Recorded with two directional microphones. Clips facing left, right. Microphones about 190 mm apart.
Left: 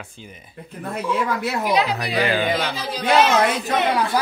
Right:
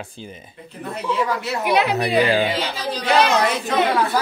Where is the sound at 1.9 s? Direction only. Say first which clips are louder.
Right 4 dB; 25° right (ahead or behind).